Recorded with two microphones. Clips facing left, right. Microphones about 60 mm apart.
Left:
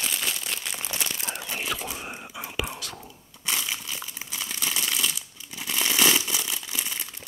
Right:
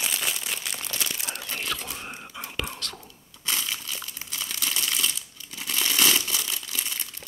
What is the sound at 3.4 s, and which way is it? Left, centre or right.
Crumpling, centre.